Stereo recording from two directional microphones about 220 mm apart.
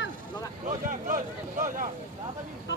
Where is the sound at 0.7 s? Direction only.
35° right (ahead or behind).